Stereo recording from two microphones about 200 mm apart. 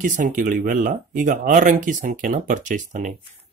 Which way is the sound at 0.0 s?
40° right (ahead or behind).